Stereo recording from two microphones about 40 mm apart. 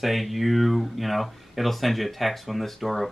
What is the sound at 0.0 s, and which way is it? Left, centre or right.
Speech, centre.